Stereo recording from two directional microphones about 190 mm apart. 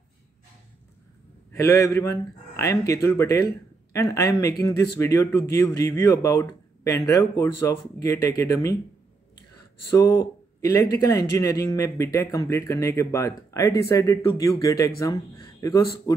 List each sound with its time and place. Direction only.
1.5 s a man's voice: 15° left (ahead or behind)
9.9 s a man's voice: 15° left (ahead or behind)